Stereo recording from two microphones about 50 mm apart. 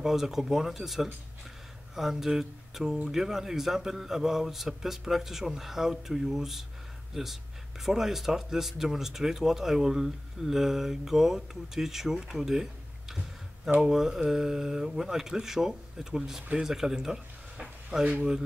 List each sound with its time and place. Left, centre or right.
0.0 s speech: centre
13.8 s speech: centre